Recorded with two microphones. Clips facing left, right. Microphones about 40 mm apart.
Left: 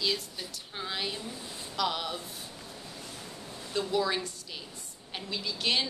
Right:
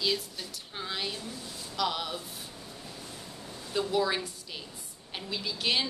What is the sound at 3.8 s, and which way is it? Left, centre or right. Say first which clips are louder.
A woman's voice: right 1 dB; centre.